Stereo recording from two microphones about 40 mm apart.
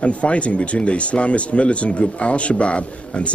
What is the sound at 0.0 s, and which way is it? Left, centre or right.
Speech, left.